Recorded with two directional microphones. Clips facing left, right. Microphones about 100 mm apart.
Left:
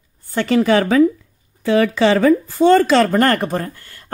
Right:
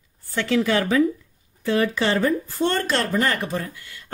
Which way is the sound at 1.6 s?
90° left.